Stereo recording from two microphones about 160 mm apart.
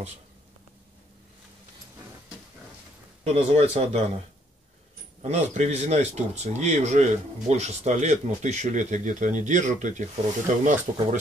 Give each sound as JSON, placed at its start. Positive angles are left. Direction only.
{"t": 3.3, "sound": "speech", "side_deg": -45}
{"t": 5.2, "sound": "speech", "side_deg": -45}